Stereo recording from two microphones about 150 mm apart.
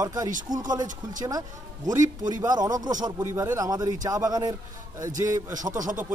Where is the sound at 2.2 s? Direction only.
25° right (ahead or behind).